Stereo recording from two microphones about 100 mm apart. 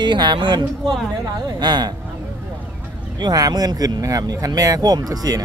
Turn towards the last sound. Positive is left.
turn(degrees=-40)  # may be behind; listen again after turning